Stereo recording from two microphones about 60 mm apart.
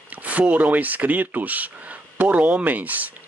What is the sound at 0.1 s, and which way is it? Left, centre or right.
Speech, right.